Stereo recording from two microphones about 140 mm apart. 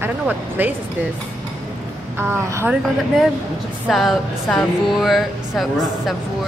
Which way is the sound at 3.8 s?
Centre (ahead or behind).